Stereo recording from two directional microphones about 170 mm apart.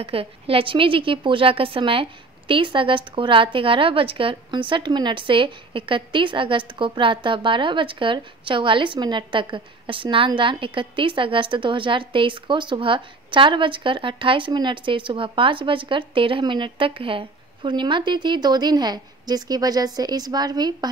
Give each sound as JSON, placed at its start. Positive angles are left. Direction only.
{"t": 0.0, "sound": "a woman's voice", "side_deg": -35}